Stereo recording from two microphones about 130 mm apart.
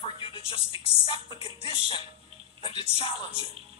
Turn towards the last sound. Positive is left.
turn(degrees=45)  # may be behind; listen again after turning